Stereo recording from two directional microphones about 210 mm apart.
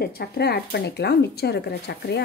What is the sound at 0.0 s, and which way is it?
A woman's voice, 50° left (ahead or behind).